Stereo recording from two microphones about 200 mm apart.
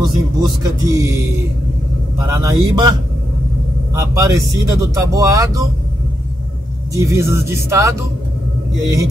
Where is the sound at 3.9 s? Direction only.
15° right (ahead or behind).